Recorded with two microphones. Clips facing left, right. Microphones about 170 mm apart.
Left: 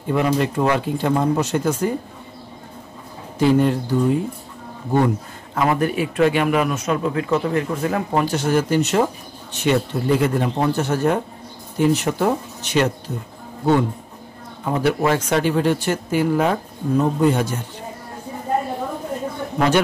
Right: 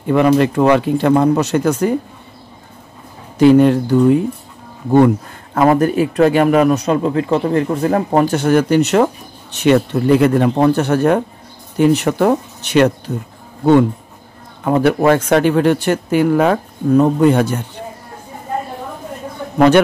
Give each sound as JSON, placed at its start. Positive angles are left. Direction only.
{"t": 0.1, "sound": "speech", "side_deg": -70}
{"t": 3.3, "sound": "speech", "side_deg": -70}
{"t": 4.9, "sound": "speech", "side_deg": -60}
{"t": 8.4, "sound": "speech", "side_deg": -60}
{"t": 14.6, "sound": "speech", "side_deg": -60}